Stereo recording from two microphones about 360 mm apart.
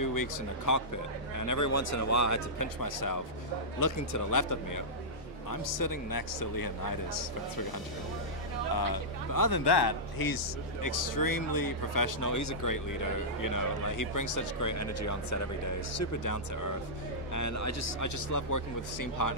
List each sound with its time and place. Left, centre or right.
0.0 s speech: left
8.7 s speech: left